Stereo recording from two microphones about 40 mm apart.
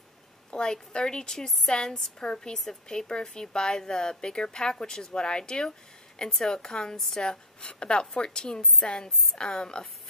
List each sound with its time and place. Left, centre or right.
0.5 s a woman's voice: left
7.6 s speech: left